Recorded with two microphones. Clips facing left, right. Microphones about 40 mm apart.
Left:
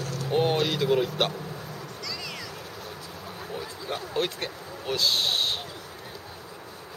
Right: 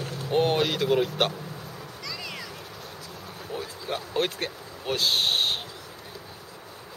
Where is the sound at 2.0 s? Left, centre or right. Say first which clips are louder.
Right 1 dB; centre.